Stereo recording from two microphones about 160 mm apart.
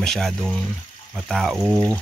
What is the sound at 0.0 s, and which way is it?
Speech, 5° left (ahead or behind).